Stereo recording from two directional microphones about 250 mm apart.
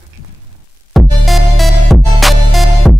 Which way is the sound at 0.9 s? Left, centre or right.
Centre.